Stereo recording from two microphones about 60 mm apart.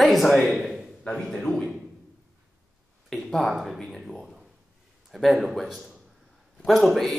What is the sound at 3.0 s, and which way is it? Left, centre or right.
Speech, centre.